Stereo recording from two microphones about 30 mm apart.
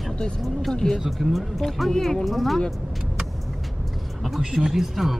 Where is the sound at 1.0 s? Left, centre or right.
Centre.